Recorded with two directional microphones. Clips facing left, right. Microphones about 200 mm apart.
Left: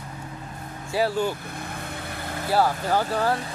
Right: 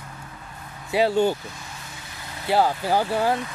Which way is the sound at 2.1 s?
55° left (ahead or behind).